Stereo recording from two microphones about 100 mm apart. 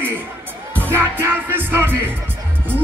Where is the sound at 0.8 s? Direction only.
20° right (ahead or behind).